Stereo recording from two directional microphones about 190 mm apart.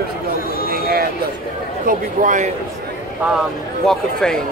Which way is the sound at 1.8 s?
45° right (ahead or behind).